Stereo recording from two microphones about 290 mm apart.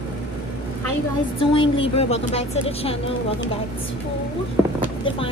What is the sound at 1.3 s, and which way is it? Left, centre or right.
A woman's voice, centre.